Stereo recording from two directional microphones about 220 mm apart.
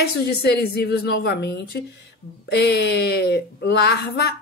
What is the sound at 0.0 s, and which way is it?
A woman's voice, 45° left (ahead or behind).